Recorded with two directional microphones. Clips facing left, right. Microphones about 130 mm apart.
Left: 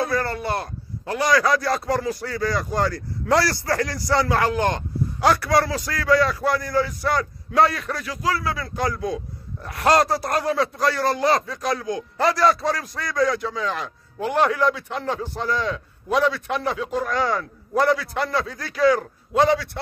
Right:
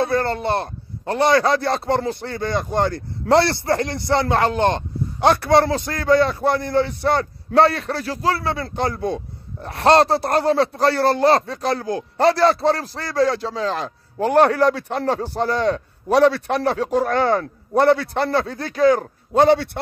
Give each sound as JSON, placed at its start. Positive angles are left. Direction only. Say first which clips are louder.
{"t": 0.0, "sound": "a man's voice", "louder": "right 4 dB", "side_deg": -25}
{"t": 16.4, "sound": "speech", "louder": "right 5 dB", "side_deg": -35}
{"t": 16.9, "sound": "speech", "louder": "right 5 dB", "side_deg": -55}
{"t": 17.4, "sound": "a man's voice", "louder": "right 4 dB", "side_deg": -35}
{"t": 19.5, "sound": "a man's voice", "louder": "right 5 dB", "side_deg": -60}